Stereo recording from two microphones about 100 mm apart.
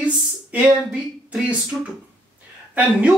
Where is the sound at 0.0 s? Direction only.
15° right (ahead or behind).